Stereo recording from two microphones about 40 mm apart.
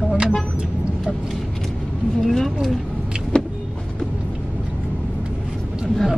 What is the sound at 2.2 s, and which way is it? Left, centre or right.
Speech, centre.